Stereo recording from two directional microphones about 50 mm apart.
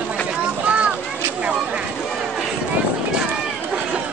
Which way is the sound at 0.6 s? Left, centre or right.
Right.